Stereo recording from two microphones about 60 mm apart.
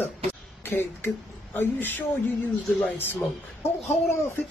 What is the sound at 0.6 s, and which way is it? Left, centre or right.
Speech, left.